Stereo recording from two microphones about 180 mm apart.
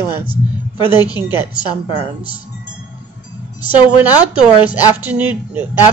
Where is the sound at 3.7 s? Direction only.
10° right (ahead or behind).